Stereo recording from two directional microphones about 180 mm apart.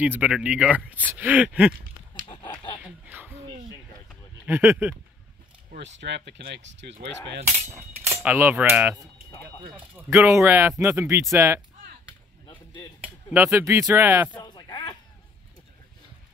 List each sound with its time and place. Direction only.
0.0 s speech: 5° right (ahead or behind)
2.4 s a sound: 10° left (ahead or behind)
2.8 s a sound: 10° right (ahead or behind)
4.5 s speech: 15° right (ahead or behind)
5.8 s speech: 75° right (ahead or behind)
8.2 s speech: 10° right (ahead or behind)
9.9 s speech: 15° right (ahead or behind)
13.3 s speech: 15° right (ahead or behind)
14.4 s a sound: 25° left (ahead or behind)